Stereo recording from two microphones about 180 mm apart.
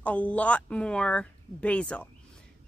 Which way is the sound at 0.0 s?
5° left (ahead or behind).